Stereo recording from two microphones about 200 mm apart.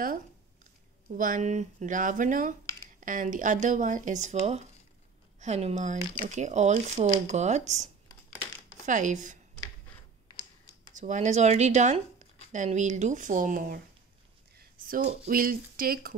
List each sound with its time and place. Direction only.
1.1 s speech: 40° right (ahead or behind)
11.0 s speech: 40° right (ahead or behind)
14.9 s speech: 45° right (ahead or behind)